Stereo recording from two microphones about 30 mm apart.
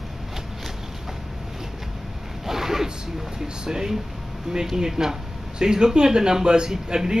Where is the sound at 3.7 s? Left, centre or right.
Right.